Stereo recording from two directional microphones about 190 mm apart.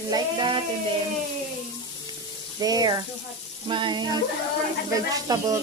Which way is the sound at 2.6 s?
20° right (ahead or behind).